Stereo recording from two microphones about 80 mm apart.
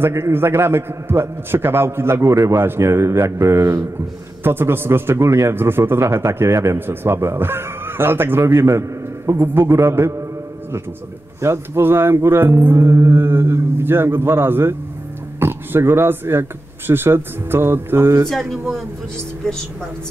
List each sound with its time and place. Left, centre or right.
0.0 s a man's voice: right
6.9 s music: right
11.4 s music: right